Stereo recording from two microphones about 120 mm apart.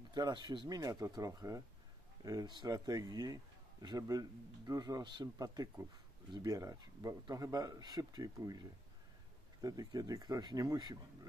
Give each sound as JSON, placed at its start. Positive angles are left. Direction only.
{"t": 0.1, "sound": "speech", "side_deg": -40}